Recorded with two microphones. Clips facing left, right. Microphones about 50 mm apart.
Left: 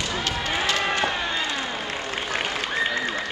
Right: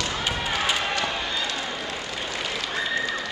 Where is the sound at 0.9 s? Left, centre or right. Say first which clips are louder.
Left 2 dB; left.